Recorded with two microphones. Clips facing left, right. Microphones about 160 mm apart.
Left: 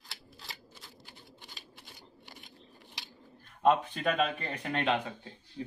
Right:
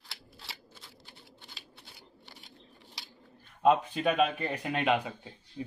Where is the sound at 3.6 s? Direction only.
Centre (ahead or behind).